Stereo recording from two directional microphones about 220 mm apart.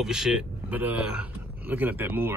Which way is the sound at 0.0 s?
Centre (ahead or behind).